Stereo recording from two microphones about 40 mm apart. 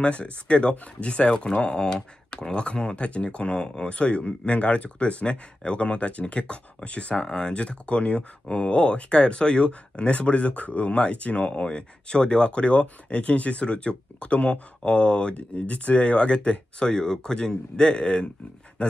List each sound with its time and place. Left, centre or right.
0.0 s speech: left
7.2 s speech: centre